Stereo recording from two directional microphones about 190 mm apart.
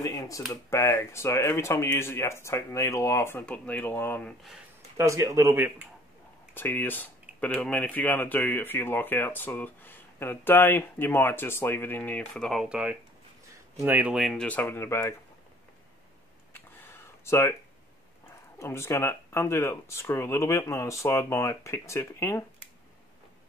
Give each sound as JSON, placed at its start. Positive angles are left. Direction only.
{"t": 0.0, "sound": "a sound", "side_deg": 20}
{"t": 0.5, "sound": "speech", "side_deg": 15}
{"t": 4.9, "sound": "speech", "side_deg": -15}
{"t": 6.5, "sound": "speech", "side_deg": 10}
{"t": 16.8, "sound": "a sound", "side_deg": 15}
{"t": 18.6, "sound": "speech", "side_deg": 15}